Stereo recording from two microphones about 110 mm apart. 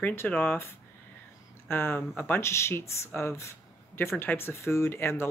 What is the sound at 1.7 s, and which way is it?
Speech, 20° left (ahead or behind).